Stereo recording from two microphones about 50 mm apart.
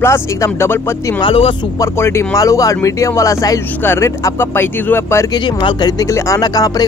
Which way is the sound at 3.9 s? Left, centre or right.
Left.